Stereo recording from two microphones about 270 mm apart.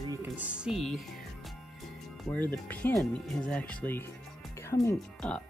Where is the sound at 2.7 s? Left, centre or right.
Centre.